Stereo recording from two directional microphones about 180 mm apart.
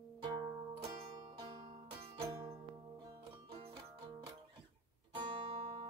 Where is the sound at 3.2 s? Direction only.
30° right (ahead or behind).